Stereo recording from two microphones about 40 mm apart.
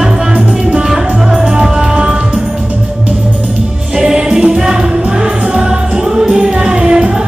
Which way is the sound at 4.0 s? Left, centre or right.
Centre.